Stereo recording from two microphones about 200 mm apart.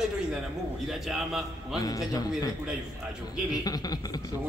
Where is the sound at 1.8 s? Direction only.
20° left (ahead or behind).